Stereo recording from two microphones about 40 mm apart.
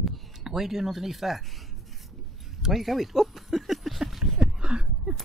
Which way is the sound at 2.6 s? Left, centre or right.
Centre.